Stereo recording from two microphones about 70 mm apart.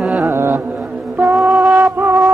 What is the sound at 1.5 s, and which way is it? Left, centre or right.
Music, right.